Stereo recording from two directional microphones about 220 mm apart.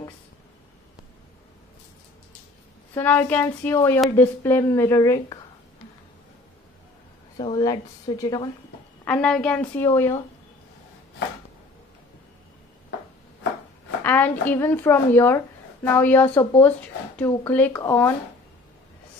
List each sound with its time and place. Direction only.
2.9 s a woman's voice: 10° left (ahead or behind)
7.3 s a woman's voice: 20° left (ahead or behind)
9.0 s a woman's voice: 5° left (ahead or behind)
14.0 s a woman's voice: 10° left (ahead or behind)